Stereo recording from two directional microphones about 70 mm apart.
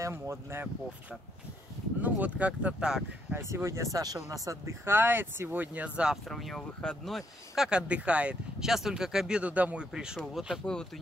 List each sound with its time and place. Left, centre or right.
0.0 s speech: right
2.0 s speech: right
3.3 s speech: right
4.8 s speech: right
6.2 s speech: centre
7.7 s speech: centre
8.6 s speech: centre
9.9 s speech: centre
10.6 s speech: centre